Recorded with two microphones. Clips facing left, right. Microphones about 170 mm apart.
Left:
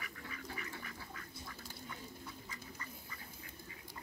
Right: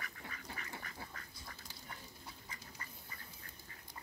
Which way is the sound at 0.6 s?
35° right (ahead or behind).